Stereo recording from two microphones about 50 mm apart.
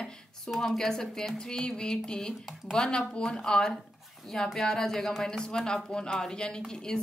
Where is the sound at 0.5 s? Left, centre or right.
Centre.